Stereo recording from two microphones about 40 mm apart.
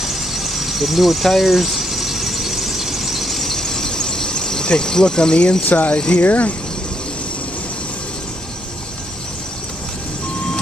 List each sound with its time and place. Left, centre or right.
0.0 s vehicle: centre; by 5.6 s left
5.6 s speech: left